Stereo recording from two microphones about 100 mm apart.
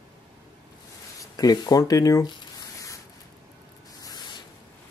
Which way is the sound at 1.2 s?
40° left (ahead or behind).